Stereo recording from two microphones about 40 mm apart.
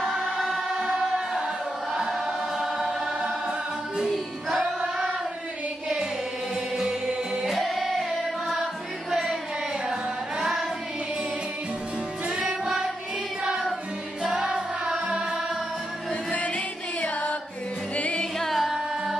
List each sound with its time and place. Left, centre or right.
0.7 s music: centre
2.0 s choir: centre
3.2 s music: centre
4.6 s choir: centre
7.4 s music: centre
9.1 s a sound: centre
9.8 s carnatic music: centre
12.3 s music: right
14.4 s music: right
16.3 s music: left
18.5 s music: centre